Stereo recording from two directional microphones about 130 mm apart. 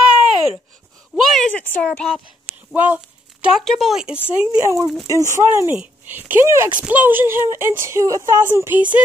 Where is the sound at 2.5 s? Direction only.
10° right (ahead or behind).